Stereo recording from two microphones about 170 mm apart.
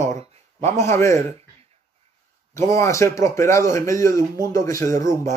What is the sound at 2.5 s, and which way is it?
Speech, 15° left (ahead or behind).